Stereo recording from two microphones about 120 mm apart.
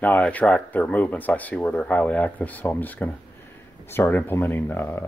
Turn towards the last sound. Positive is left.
turn(degrees=20)  # may be behind; listen again after turning